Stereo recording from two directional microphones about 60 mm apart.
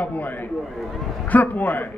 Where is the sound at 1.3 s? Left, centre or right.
Left.